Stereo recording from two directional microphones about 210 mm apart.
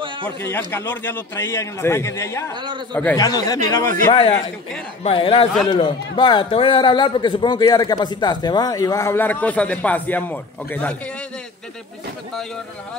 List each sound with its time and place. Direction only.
0.4 s a man's voice: 10° left (ahead or behind)
2.5 s a man's voice: 20° right (ahead or behind)
2.9 s a man's voice: 5° left (ahead or behind)
3.3 s a man's voice: 15° left (ahead or behind)
4.1 s a man's voice: 30° left (ahead or behind); by 11.0 s 5° left (ahead or behind)